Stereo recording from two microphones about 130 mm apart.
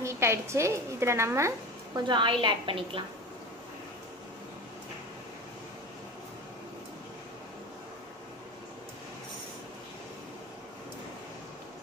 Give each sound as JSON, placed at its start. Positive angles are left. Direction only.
{"t": 0.0, "sound": "a woman's voice", "side_deg": -20}
{"t": 2.0, "sound": "a woman's voice", "side_deg": -35}